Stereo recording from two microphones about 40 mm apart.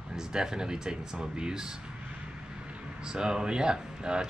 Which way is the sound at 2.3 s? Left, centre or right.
Right.